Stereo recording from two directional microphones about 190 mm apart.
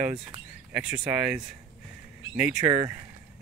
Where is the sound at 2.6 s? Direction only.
25° right (ahead or behind).